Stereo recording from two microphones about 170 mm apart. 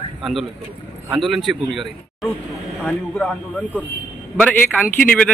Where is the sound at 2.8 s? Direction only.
5° left (ahead or behind).